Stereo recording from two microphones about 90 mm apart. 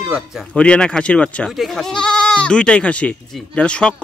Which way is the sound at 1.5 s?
Centre (ahead or behind).